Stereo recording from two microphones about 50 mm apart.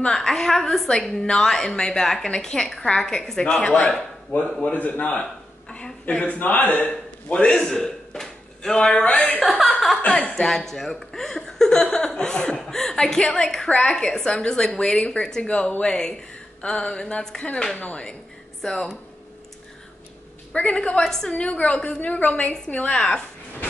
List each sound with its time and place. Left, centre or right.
0.0 s a woman's voice: centre
4.3 s speech: left
4.7 s a man's voice: left
5.2 s a sound: centre
6.2 s a man's voice: left
7.2 s a woman's voice: left
7.5 s a sound: centre
8.7 s a woman's voice: centre
9.4 s chuckle: centre
10.1 s a woman's voice: centre
10.5 s a woman's voice: centre
20.5 s a woman's voice: left
22.9 s a woman's voice: centre